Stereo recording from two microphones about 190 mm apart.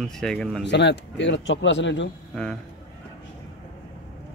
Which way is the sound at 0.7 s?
70° left (ahead or behind).